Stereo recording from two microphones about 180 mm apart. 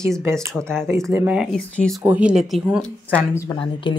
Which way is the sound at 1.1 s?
10° right (ahead or behind).